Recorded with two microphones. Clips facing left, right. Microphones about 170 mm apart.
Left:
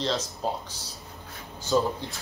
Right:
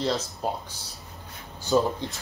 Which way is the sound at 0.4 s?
10° right (ahead or behind).